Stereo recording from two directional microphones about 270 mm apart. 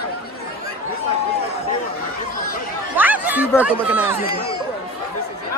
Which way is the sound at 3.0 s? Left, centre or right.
Centre.